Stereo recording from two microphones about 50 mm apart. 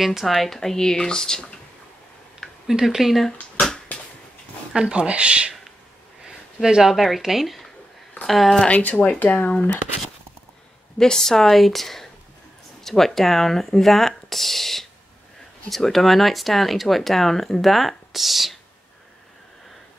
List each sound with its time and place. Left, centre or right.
0.0 s speech: centre
2.7 s speech: centre
4.7 s speech: centre
8.6 s speech: left
11.0 s speech: centre